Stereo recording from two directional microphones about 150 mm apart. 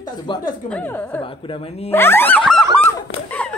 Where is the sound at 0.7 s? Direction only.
15° left (ahead or behind).